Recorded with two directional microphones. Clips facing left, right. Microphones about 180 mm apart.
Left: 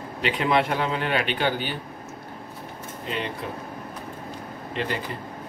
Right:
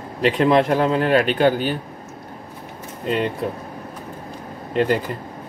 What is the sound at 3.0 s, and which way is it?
Speech, 45° right (ahead or behind).